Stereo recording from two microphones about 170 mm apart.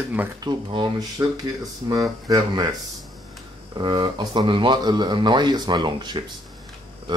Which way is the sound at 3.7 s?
25° right (ahead or behind).